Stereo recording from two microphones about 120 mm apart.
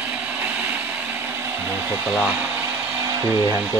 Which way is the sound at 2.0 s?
10° right (ahead or behind).